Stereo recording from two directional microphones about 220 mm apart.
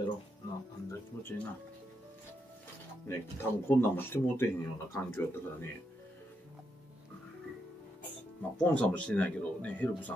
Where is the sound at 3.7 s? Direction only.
10° left (ahead or behind).